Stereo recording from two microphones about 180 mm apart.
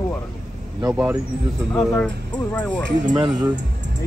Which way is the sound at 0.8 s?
10° right (ahead or behind).